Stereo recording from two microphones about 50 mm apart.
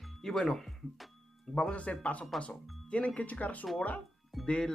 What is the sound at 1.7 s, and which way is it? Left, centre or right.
Speech, left.